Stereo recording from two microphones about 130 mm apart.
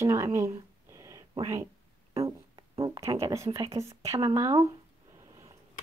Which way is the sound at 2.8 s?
25° right (ahead or behind).